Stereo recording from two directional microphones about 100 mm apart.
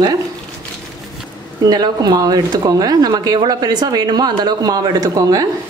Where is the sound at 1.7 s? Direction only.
40° right (ahead or behind).